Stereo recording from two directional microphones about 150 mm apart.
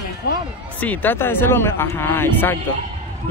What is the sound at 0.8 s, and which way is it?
Speech, 10° left (ahead or behind).